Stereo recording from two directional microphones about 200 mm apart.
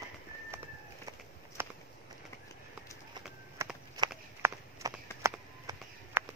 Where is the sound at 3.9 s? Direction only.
15° right (ahead or behind).